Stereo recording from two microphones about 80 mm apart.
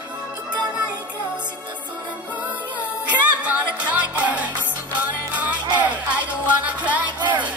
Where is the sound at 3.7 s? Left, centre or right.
Centre.